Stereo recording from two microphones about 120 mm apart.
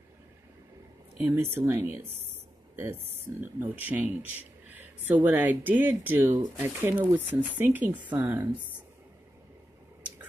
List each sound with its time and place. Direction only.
1.2 s speech: 20° right (ahead or behind)